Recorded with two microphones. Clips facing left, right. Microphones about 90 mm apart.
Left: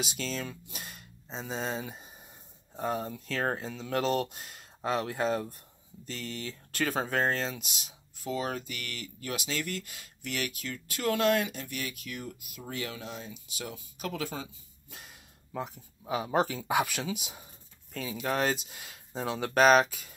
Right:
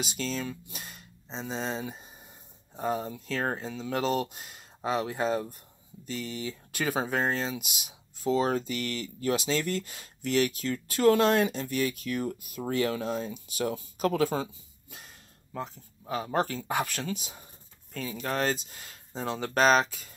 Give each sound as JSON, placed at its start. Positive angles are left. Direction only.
{"t": 0.0, "sound": "speech", "side_deg": 0}
{"t": 8.2, "sound": "speech", "side_deg": -30}
{"t": 14.9, "sound": "speech", "side_deg": 0}